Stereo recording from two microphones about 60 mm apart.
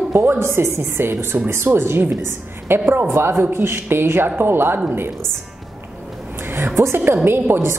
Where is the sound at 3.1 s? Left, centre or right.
Right.